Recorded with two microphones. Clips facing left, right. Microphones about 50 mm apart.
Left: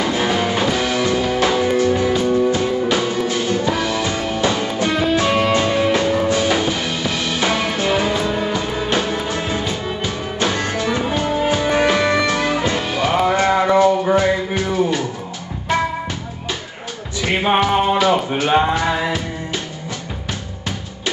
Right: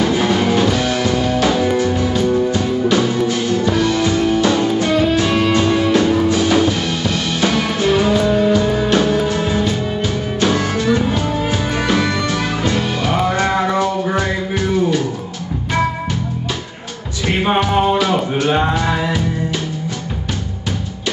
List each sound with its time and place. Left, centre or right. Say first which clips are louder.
0.0 s music: right 3 dB; centre
10.8 s music: right 3 dB; centre
17.6 s music: right 1 dB; centre